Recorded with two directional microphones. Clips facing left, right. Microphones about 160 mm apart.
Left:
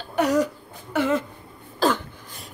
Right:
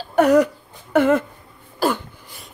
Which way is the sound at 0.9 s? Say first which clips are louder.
Right 6 dB; 55° right (ahead or behind).